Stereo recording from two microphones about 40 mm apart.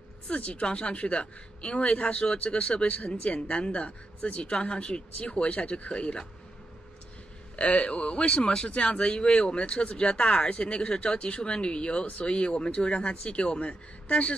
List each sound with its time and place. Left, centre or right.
0.3 s speech: left
7.5 s speech: left